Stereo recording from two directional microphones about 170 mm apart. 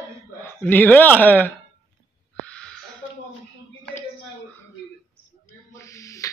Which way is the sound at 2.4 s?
5° left (ahead or behind).